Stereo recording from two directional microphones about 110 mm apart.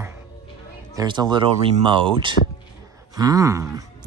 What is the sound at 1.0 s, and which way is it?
Speech, 45° right (ahead or behind).